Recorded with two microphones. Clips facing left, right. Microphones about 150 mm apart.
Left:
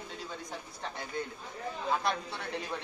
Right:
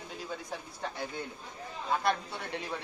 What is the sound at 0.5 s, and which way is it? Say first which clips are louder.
Speech: right 2 dB; 5° right (ahead or behind).